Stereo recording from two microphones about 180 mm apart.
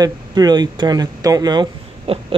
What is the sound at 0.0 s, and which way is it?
Speech, 20° right (ahead or behind).